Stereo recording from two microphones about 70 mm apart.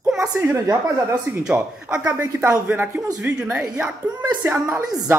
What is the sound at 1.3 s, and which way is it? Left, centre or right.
A woman's voice, right.